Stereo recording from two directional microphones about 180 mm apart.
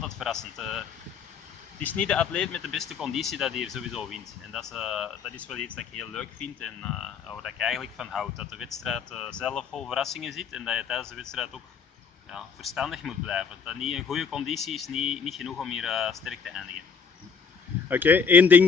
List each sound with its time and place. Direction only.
0.0 s speech: centre (ahead or behind)
5.3 s speech: 5° left (ahead or behind)
17.8 s speech: 10° right (ahead or behind)